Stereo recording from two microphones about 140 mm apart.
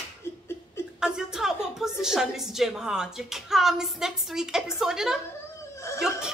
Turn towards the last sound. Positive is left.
turn(degrees=20)  # may be behind; listen again after turning